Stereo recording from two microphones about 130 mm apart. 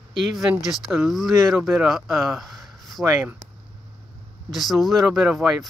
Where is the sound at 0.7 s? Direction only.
5° right (ahead or behind).